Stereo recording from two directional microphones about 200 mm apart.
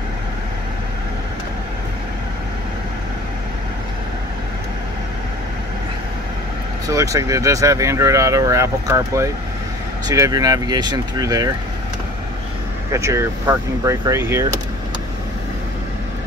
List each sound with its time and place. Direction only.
6.9 s speech: 15° right (ahead or behind)
12.9 s speech: 15° right (ahead or behind)